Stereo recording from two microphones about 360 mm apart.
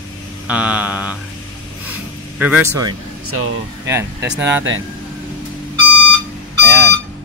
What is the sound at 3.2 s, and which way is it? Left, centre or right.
Speech, right.